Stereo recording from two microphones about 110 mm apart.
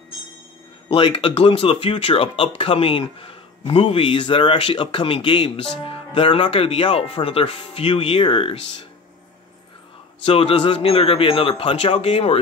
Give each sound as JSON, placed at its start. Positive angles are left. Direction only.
{"t": 0.9, "sound": "speech", "side_deg": 50}
{"t": 10.2, "sound": "speech", "side_deg": 60}